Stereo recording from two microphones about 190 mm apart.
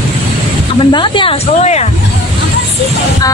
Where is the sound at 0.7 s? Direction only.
25° left (ahead or behind).